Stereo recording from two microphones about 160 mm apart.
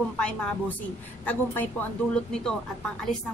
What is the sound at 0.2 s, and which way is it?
A woman's voice, 5° left (ahead or behind).